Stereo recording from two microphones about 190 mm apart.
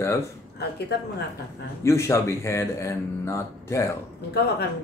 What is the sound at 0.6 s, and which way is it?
Speech, 60° left (ahead or behind).